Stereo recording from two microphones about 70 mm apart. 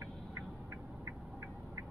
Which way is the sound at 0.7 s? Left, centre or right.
Right.